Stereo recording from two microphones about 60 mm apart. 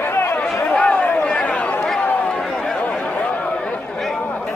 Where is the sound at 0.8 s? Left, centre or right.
Left.